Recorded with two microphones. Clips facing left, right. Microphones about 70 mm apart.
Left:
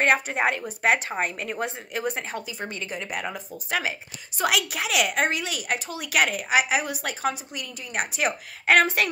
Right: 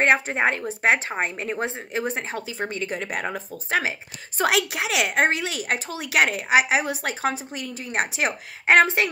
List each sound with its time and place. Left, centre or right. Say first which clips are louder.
0.0 s a woman's voice: right 2 dB; right